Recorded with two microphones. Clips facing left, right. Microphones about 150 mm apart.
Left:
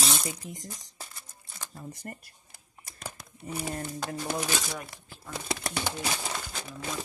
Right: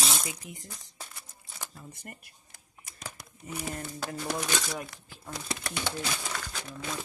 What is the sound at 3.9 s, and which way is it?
Speech, centre (ahead or behind).